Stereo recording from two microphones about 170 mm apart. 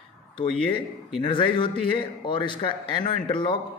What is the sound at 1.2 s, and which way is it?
Speech, 30° left (ahead or behind).